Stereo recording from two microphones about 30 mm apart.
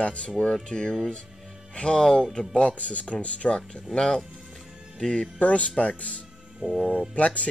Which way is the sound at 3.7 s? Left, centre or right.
Left.